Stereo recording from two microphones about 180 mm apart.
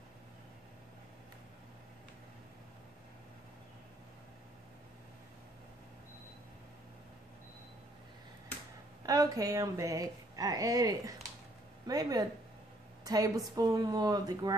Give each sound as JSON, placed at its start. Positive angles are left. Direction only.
{"t": 9.0, "sound": "a woman's voice", "side_deg": -20}